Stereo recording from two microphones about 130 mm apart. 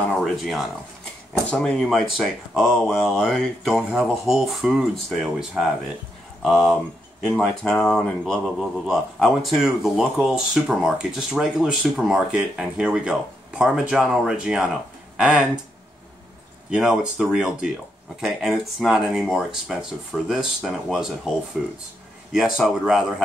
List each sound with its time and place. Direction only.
0.2 s speech: centre (ahead or behind)
16.7 s speech: 5° right (ahead or behind)